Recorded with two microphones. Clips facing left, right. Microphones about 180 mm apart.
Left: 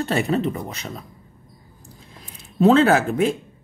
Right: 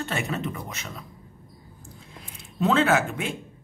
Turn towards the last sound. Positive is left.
turn(degrees=35)  # may be behind; listen again after turning